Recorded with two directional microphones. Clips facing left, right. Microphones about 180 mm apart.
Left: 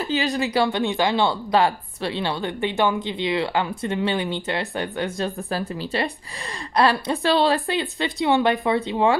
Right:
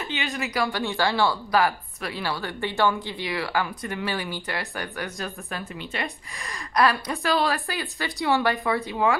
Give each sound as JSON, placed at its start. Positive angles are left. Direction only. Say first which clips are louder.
{"t": 0.0, "sound": "speech", "louder": "left 7 dB", "side_deg": 35}